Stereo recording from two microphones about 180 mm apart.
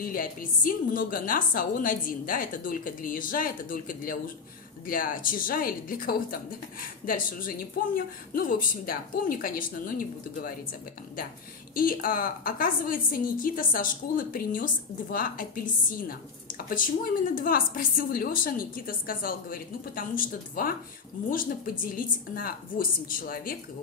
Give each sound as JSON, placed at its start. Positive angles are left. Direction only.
{"t": 0.0, "sound": "a woman's voice", "side_deg": 50}
{"t": 11.7, "sound": "a woman's voice", "side_deg": 50}